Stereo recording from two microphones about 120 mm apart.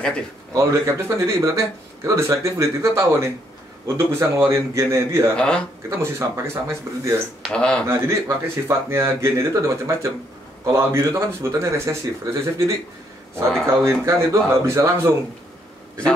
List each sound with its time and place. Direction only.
0.6 s speech: 25° right (ahead or behind)
5.3 s speech: 10° left (ahead or behind)
5.9 s speech: 25° right (ahead or behind)
7.4 s speech: 10° left (ahead or behind)
7.8 s speech: 20° right (ahead or behind)